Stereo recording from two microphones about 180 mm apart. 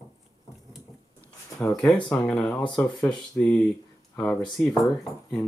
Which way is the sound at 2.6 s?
15° left (ahead or behind).